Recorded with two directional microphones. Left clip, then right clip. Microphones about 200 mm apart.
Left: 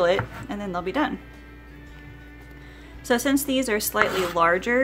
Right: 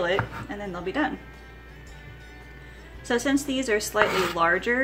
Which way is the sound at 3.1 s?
25° left (ahead or behind).